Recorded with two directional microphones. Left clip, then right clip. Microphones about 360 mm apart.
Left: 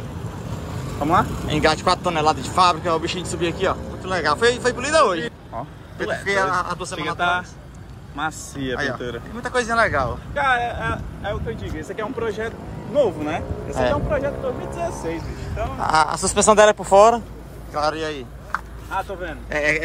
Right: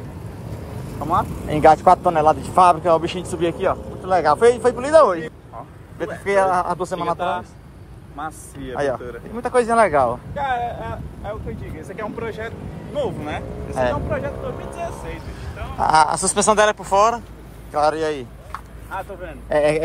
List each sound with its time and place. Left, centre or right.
1.5 s speech: centre
6.2 s speech: centre
7.2 s speech: left
8.7 s speech: centre
10.3 s speech: left
15.8 s speech: centre
17.7 s speech: centre
19.5 s speech: centre